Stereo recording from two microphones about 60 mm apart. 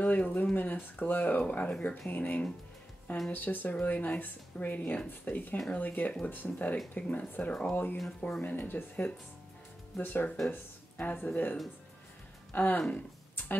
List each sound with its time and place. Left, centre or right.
0.0 s speech: left
8.2 s speech: left
8.5 s speech: left
12.5 s speech: left
12.9 s a sound: left